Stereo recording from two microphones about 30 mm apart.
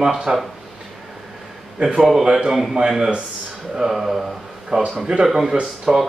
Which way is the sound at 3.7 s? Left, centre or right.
Centre.